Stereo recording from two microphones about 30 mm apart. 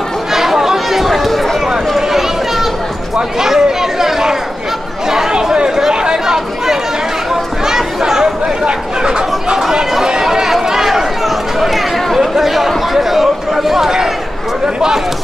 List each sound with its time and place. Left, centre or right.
0.3 s chatter: centre
2.0 s a sound: centre
3.3 s chatter: centre
9.0 s a sound: right
9.6 s chatter: centre
10.3 s run: centre